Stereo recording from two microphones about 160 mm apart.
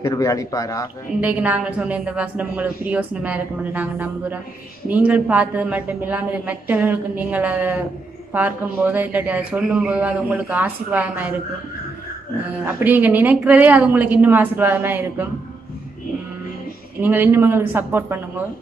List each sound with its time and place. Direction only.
0.0 s a man's voice: 20° left (ahead or behind)
1.2 s a woman's voice: 10° right (ahead or behind)
12.6 s a woman's voice: 10° right (ahead or behind)
17.0 s a woman's voice: 10° right (ahead or behind)